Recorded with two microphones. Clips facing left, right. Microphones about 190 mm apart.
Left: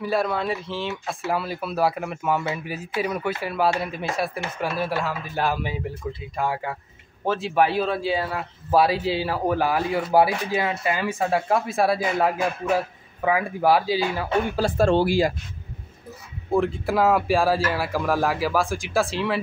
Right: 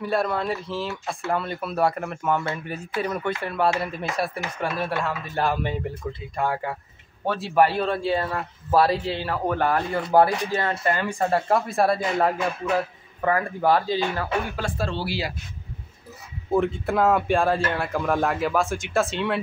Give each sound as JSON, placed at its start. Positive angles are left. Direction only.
{"t": 0.0, "sound": "speech", "side_deg": 0}
{"t": 14.8, "sound": "speech", "side_deg": 50}
{"t": 16.5, "sound": "speech", "side_deg": 0}